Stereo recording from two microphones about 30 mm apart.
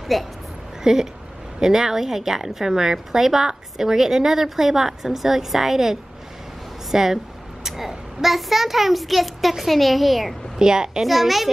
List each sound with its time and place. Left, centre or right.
0.0 s a woman's voice: centre
0.8 s a child's voice: centre
10.6 s a child's voice: right
11.1 s a child's voice: centre